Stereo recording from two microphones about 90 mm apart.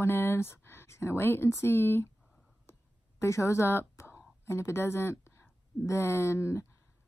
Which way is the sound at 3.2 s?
30° left (ahead or behind).